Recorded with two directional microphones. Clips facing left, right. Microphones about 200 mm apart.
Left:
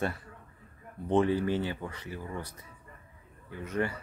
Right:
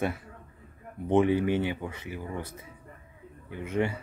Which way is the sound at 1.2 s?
15° right (ahead or behind).